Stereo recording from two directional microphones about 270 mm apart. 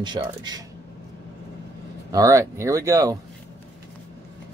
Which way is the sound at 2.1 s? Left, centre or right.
Centre.